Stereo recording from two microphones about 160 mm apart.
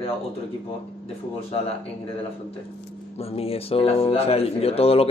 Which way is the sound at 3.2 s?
40° left (ahead or behind).